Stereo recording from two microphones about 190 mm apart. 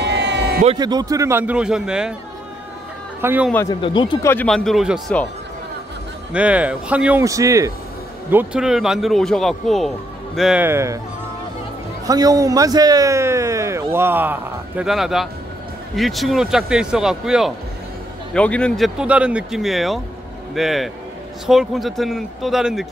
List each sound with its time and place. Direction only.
0.0 s a sound: 65° right (ahead or behind)
0.7 s a man's voice: 20° right (ahead or behind); by 2.1 s 5° right (ahead or behind)
3.2 s speech: 10° right (ahead or behind)
3.8 s speech: 25° left (ahead or behind)
4.3 s speech: 10° left (ahead or behind)
6.3 s a man's voice: 5° right (ahead or behind)
12.1 s a man's voice: 20° right (ahead or behind); by 22.8 s 5° right (ahead or behind)